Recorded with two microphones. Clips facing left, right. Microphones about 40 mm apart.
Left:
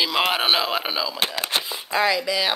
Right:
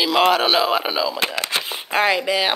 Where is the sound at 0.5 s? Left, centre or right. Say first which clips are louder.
Right 5 dB; centre.